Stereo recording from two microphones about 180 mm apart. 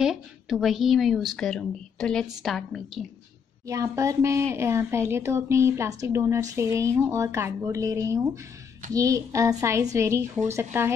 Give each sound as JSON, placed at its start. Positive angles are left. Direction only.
{"t": 0.0, "sound": "a woman's voice", "side_deg": 0}
{"t": 3.6, "sound": "a woman's voice", "side_deg": -15}